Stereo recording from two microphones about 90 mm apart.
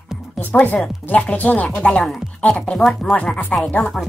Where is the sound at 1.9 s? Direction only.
5° left (ahead or behind).